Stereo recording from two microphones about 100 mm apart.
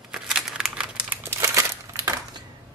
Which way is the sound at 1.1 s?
25° right (ahead or behind).